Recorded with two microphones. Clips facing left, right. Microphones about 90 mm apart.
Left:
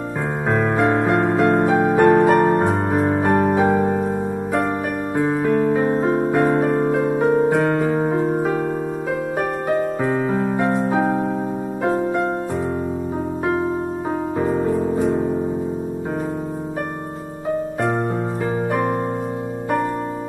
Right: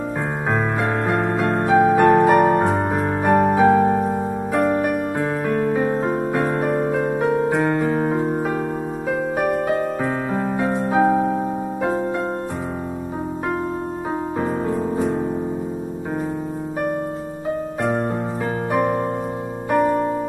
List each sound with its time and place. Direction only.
0.5 s music: centre (ahead or behind)
10.0 s music: centre (ahead or behind)
10.9 s electric piano: 5° right (ahead or behind)
11.8 s music: centre (ahead or behind)